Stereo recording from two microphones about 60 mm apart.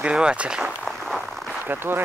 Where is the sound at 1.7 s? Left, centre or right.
Right.